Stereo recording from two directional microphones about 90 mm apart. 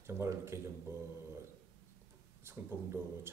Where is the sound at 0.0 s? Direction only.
30° right (ahead or behind).